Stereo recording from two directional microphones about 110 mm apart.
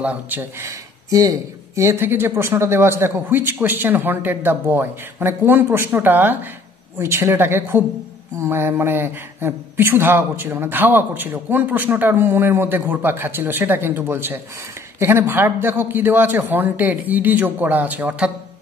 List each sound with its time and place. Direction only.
0.0 s a man's voice: 15° right (ahead or behind)
0.7 s a man's voice: 30° right (ahead or behind); by 18.3 s 10° right (ahead or behind)